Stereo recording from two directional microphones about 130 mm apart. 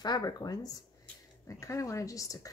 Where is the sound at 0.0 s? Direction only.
35° left (ahead or behind).